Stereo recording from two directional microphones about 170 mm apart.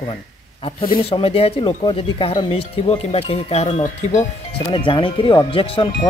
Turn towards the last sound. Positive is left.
turn(degrees=30)  # may be behind; listen again after turning